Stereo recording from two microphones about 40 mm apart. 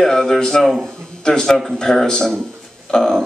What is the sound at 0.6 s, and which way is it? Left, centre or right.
Speech, centre.